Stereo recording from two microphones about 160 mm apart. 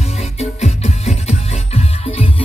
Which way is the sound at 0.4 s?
40° left (ahead or behind).